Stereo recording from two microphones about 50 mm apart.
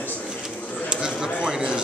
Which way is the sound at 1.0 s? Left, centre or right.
Centre.